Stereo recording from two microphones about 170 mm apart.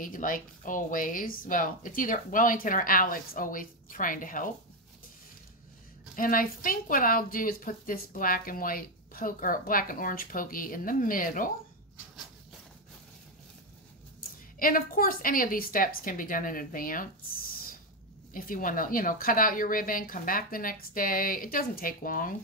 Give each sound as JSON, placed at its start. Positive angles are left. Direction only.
{"t": 0.0, "sound": "speech", "side_deg": 50}
{"t": 6.1, "sound": "speech", "side_deg": 55}
{"t": 14.6, "sound": "speech", "side_deg": 55}
{"t": 18.3, "sound": "speech", "side_deg": 55}